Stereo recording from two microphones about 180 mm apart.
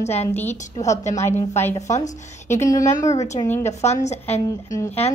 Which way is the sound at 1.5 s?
15° left (ahead or behind).